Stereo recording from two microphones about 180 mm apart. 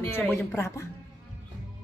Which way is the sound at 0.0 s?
10° left (ahead or behind).